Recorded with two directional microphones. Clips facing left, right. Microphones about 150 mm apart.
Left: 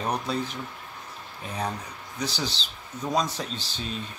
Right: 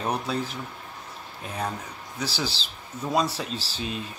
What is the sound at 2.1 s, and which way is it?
Speech, 5° right (ahead or behind).